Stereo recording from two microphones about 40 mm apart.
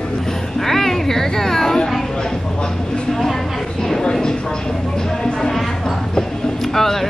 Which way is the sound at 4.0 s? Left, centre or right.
Centre.